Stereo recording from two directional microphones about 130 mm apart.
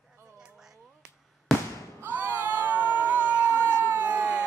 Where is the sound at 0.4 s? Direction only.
5° right (ahead or behind).